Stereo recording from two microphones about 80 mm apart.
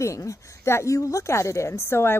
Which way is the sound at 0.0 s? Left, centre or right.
Left.